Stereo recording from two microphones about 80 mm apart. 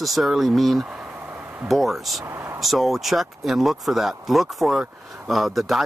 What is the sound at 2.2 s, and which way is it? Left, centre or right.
Speech, right.